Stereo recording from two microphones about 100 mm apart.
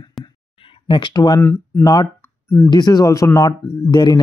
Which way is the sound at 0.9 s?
50° left (ahead or behind).